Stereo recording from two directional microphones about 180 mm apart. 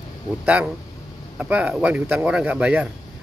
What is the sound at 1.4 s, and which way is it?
Speech, 10° right (ahead or behind).